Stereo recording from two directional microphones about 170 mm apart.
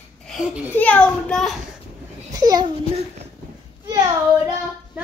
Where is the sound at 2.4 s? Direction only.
20° right (ahead or behind).